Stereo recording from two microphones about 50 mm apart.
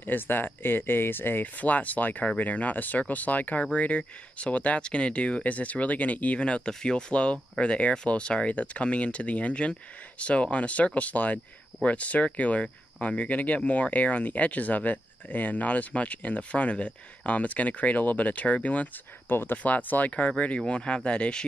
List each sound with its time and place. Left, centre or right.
0.0 s speech: left
1.6 s speech: left
19.2 s speech: left
19.6 s speech: left